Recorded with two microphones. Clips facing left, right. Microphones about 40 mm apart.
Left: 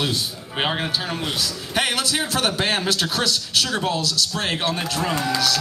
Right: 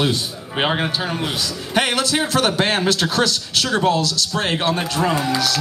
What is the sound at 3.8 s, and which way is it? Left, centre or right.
Speech, centre.